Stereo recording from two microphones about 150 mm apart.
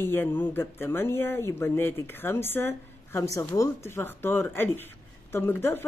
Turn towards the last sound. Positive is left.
turn(degrees=15)  # may be behind; listen again after turning